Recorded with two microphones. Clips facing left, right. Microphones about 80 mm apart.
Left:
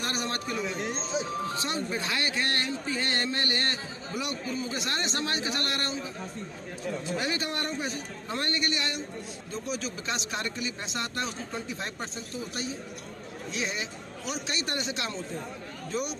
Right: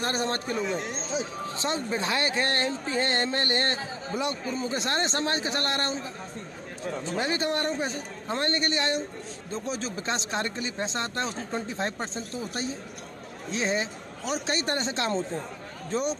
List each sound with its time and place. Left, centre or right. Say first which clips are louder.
0.0 s speech: right 4 dB; right
0.7 s speech: right 2 dB; centre
1.5 s speech: right 2 dB; right
7.2 s speech: right 7 dB; right
13.5 s speech: right 6 dB; right